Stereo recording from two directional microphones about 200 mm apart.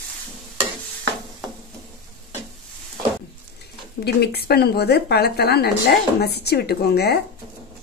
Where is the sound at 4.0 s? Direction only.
55° left (ahead or behind).